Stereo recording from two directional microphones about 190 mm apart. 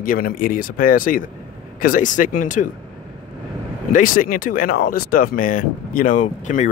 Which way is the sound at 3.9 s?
45° left (ahead or behind).